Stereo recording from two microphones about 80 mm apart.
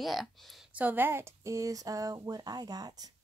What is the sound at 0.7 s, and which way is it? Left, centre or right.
Speech, right.